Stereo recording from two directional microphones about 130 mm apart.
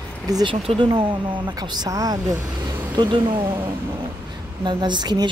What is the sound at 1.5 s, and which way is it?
Speech, 30° right (ahead or behind).